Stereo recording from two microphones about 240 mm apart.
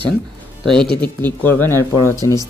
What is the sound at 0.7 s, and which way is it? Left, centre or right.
Speech, centre.